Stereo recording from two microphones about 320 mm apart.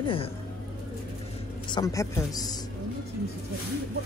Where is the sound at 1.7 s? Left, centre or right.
Centre.